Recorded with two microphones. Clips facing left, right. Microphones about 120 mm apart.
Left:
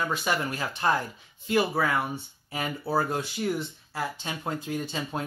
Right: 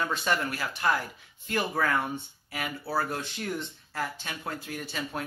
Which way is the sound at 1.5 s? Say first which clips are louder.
Left 3 dB; 10° left (ahead or behind).